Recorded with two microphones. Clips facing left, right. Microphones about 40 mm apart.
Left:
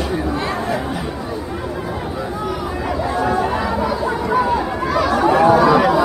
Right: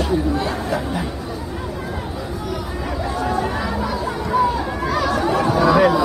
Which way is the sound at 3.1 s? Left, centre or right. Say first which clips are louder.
Left 4 dB; centre.